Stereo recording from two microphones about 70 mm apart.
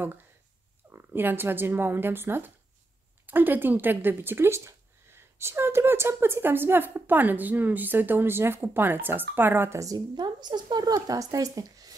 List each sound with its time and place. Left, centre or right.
0.9 s speech: right
9.8 s speech: right